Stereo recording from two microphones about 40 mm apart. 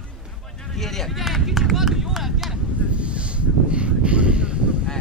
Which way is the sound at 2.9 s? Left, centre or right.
Right.